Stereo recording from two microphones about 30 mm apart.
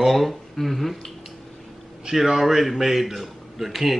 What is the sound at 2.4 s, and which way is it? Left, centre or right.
A man's voice, centre.